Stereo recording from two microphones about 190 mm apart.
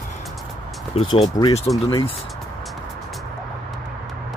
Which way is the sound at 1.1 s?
25° left (ahead or behind).